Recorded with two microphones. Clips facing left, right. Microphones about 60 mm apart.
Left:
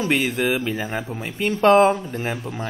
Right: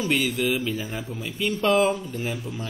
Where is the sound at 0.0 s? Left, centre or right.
Left.